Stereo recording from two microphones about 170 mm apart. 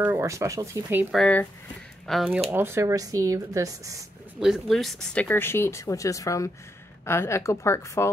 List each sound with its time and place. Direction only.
0.0 s speech: 15° right (ahead or behind)
1.1 s speech: 5° left (ahead or behind)
2.5 s speech: 15° right (ahead or behind)
4.4 s speech: centre (ahead or behind); by 8.1 s 15° left (ahead or behind)